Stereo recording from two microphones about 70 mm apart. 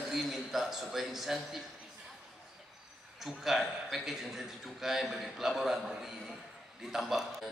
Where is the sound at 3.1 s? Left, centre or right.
Centre.